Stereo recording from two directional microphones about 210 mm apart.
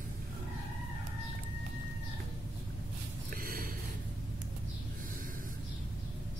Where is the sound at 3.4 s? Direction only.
40° right (ahead or behind).